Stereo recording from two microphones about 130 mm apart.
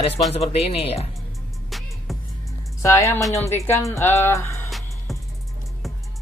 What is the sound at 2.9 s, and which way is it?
Speech, 20° left (ahead or behind).